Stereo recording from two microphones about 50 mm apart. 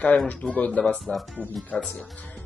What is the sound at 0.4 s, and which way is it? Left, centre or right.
Speech, left.